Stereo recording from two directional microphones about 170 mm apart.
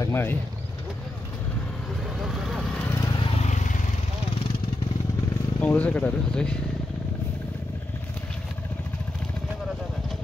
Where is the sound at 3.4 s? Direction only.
45° left (ahead or behind).